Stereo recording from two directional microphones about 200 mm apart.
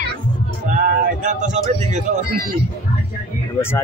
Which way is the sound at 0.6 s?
40° right (ahead or behind).